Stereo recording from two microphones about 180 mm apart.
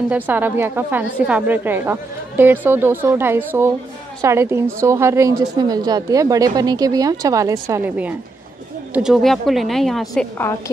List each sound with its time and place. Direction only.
0.1 s a woman's voice: 10° right (ahead or behind)